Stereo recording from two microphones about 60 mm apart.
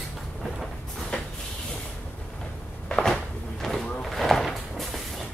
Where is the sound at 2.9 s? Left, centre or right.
Centre.